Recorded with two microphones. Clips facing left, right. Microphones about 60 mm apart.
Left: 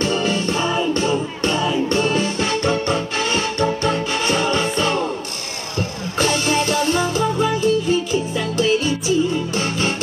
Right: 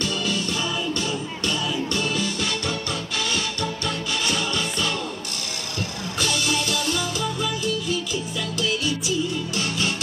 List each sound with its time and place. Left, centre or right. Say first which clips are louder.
0.0 s music: left 6 dB; left